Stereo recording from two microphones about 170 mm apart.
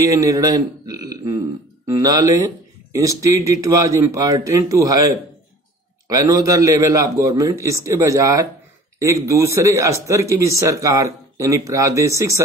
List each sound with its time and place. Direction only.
0.0 s a man's voice: 20° right (ahead or behind)